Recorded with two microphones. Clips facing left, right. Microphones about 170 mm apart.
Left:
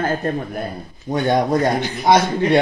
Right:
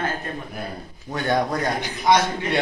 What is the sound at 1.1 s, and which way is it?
Speech, 20° left (ahead or behind).